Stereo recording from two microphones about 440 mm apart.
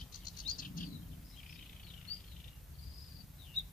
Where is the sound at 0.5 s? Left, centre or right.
Centre.